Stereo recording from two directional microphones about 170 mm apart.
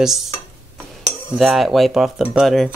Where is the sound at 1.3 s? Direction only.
Centre (ahead or behind).